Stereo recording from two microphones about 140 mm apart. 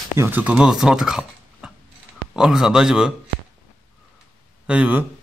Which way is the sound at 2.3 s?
5° right (ahead or behind).